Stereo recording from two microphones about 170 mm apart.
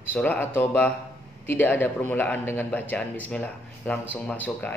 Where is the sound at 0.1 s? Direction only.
10° left (ahead or behind).